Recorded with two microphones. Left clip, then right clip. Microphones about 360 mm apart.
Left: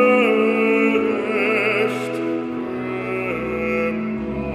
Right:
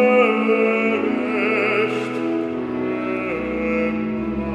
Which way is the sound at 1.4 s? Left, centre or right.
Left.